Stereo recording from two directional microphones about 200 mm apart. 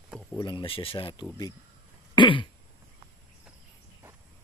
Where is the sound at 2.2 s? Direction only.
25° left (ahead or behind).